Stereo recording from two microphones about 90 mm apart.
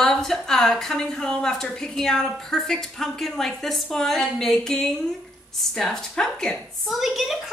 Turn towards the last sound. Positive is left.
turn(degrees=-5)  # may be behind; listen again after turning